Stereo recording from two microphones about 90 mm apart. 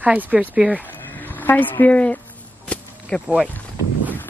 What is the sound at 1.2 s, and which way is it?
Speech, 20° left (ahead or behind).